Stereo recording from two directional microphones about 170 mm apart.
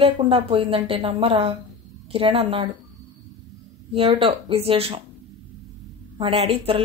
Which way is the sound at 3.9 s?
35° right (ahead or behind).